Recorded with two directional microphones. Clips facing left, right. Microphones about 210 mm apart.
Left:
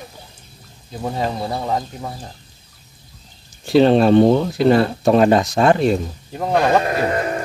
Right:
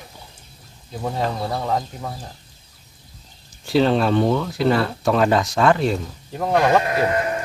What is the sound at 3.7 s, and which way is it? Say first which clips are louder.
Speech: left 5 dB; 20° left (ahead or behind).